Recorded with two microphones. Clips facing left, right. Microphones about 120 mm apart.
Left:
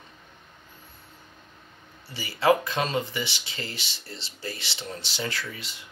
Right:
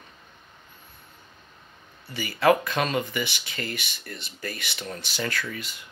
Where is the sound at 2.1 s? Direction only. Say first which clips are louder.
Right 1 dB; 25° left (ahead or behind).